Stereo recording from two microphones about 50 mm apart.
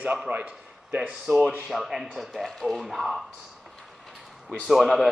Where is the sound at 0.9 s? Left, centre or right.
Centre.